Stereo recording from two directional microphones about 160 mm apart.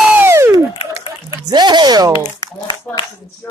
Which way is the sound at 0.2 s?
15° right (ahead or behind).